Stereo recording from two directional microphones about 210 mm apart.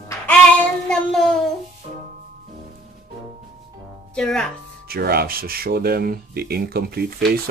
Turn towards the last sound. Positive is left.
turn(degrees=-50)  # may be behind; listen again after turning